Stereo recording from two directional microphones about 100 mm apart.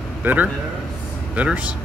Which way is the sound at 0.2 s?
20° right (ahead or behind).